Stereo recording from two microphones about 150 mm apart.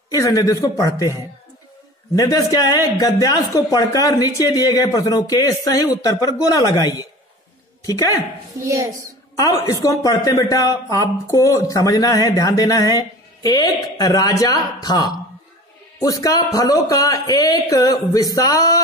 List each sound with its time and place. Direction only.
0.1 s a woman's voice: 20° left (ahead or behind)
9.4 s speech: 25° left (ahead or behind)